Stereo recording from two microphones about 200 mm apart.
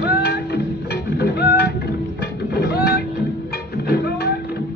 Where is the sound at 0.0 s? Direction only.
50° left (ahead or behind).